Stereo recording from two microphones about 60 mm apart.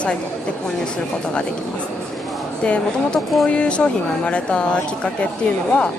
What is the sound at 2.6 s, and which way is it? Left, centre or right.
Speech, centre.